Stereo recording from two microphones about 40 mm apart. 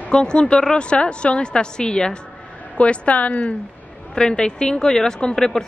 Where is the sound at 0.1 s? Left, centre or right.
Left.